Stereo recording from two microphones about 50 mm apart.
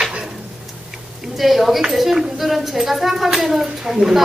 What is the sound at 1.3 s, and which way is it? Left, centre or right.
A woman's voice, centre.